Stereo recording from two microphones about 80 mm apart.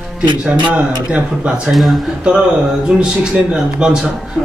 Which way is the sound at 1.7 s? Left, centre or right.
Centre.